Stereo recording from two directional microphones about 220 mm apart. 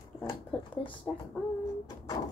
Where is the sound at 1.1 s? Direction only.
5° left (ahead or behind).